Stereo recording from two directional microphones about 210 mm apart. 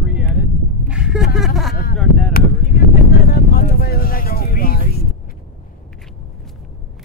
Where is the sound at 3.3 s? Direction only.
45° left (ahead or behind).